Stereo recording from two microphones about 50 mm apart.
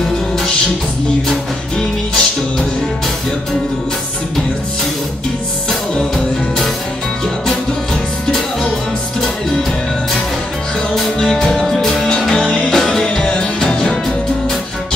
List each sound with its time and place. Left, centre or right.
1.3 s music: centre
5.7 s music: centre
11.0 s music: centre